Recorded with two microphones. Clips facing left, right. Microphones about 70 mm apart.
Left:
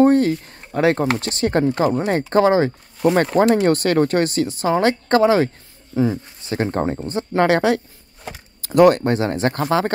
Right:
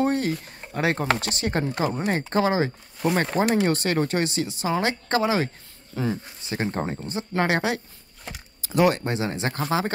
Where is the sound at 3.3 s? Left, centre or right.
Left.